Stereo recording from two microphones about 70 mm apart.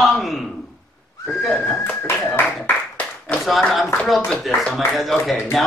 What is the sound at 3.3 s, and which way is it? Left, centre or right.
Clapping, left.